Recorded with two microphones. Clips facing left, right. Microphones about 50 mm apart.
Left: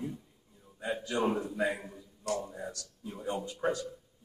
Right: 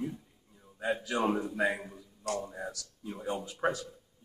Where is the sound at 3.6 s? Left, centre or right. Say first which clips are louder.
Right 1 dB; right.